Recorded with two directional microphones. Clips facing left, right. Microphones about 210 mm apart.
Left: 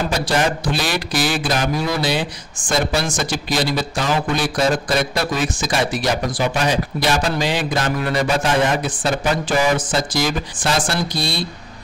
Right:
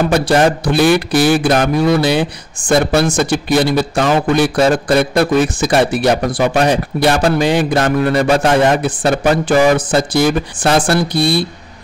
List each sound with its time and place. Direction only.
0.1 s a man's voice: 60° right (ahead or behind)